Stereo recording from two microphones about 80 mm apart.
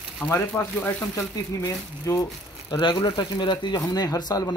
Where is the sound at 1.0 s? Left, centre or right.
Left.